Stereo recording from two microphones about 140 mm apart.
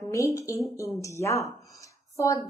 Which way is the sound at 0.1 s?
25° left (ahead or behind).